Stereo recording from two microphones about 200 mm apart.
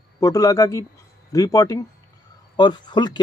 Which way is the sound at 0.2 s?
15° left (ahead or behind).